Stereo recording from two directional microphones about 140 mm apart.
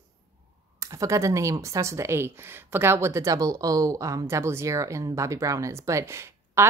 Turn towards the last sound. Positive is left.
turn(degrees=-20)  # may be behind; listen again after turning